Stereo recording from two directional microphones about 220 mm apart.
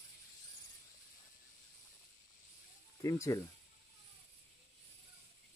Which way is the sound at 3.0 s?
15° left (ahead or behind).